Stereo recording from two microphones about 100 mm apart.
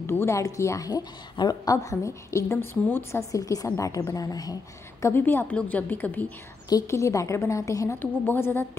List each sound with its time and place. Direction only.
0.0 s a woman's voice: 25° left (ahead or behind)
5.0 s a woman's voice: 25° left (ahead or behind)
6.7 s a woman's voice: 30° left (ahead or behind)
8.3 s a woman's voice: 20° left (ahead or behind)